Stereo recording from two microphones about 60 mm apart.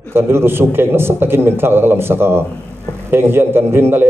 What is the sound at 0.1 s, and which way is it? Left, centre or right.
A man's voice, right.